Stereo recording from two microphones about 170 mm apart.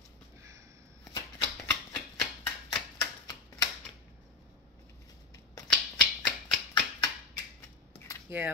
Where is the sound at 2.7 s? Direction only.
20° left (ahead or behind).